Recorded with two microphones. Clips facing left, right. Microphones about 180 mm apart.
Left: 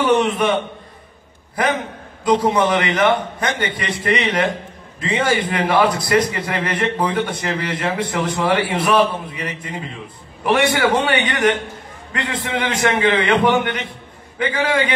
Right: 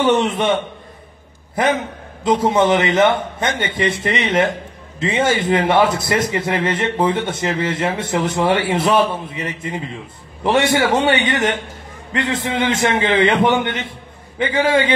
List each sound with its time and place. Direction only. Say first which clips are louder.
0.0 s a man's voice: even; 25° right (ahead or behind)
1.5 s a man's voice: right 2 dB; 25° right (ahead or behind)